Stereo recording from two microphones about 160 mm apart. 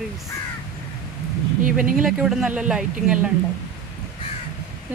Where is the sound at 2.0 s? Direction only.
5° right (ahead or behind).